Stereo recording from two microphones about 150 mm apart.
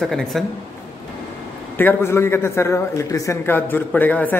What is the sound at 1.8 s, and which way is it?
A man's voice, 15° left (ahead or behind).